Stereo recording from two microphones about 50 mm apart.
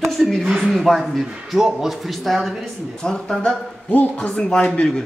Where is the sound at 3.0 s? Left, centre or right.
Centre.